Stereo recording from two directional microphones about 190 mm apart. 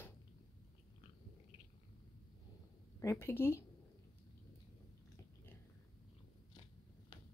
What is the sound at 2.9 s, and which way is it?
Speech, 15° left (ahead or behind).